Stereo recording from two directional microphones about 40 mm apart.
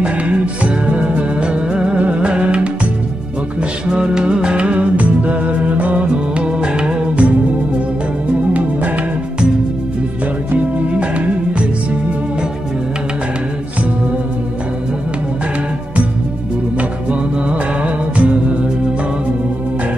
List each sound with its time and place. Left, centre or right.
0.0 s music: right
3.9 s music: right
8.5 s music: right
11.0 s music: right
17.1 s music: right